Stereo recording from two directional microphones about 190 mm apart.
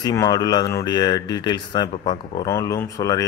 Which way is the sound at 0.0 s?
20° left (ahead or behind).